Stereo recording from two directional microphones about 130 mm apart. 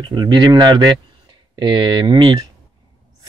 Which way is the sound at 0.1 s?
35° right (ahead or behind).